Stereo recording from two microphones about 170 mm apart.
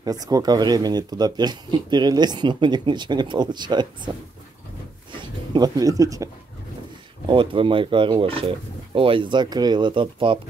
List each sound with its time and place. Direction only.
0.0 s speech: 20° right (ahead or behind)
5.1 s speech: 25° right (ahead or behind)
7.2 s speech: 30° right (ahead or behind)